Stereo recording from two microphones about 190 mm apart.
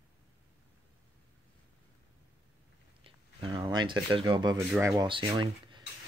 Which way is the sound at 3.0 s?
25° right (ahead or behind).